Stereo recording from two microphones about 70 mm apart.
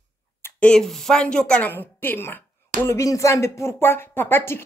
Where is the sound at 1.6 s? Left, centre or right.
Left.